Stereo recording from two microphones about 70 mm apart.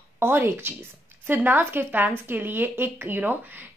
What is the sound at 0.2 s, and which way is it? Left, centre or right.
A woman's voice, right.